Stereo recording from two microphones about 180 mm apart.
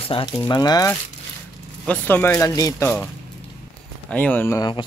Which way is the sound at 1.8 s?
10° left (ahead or behind).